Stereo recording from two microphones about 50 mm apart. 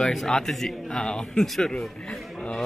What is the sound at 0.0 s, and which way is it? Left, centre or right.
Speech, centre.